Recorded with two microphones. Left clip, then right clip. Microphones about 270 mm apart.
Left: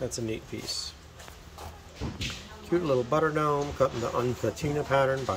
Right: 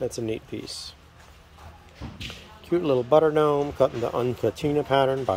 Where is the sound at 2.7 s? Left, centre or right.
Centre.